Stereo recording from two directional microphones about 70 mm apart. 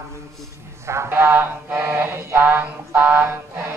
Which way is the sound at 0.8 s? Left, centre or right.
Right.